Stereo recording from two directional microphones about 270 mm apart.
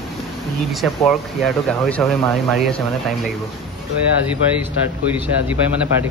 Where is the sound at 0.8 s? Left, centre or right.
Centre.